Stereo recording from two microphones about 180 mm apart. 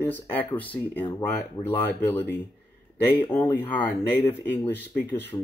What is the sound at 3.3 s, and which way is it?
Speech, 10° left (ahead or behind).